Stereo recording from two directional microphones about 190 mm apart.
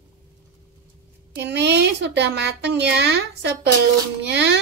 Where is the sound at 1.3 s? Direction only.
60° right (ahead or behind).